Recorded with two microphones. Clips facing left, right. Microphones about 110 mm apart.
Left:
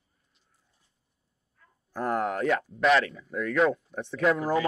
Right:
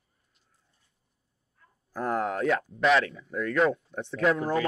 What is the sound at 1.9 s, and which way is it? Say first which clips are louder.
Speech: left 1 dB; centre (ahead or behind).